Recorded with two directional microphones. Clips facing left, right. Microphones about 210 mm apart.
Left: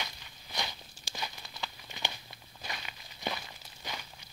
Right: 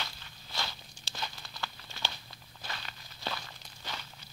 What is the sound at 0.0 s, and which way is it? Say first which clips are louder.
Walk: left 1 dB; 15° left (ahead or behind).